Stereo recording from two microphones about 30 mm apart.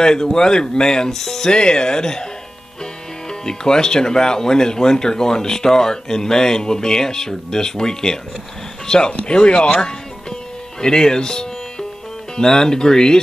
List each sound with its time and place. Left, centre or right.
0.0 s speech: left
1.5 s speech: left
3.3 s speech: left
9.0 s speech: left